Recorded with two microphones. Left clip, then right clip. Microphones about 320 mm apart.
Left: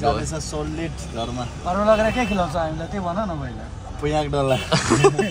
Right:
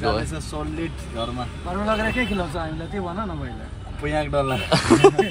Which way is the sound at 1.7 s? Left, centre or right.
Left.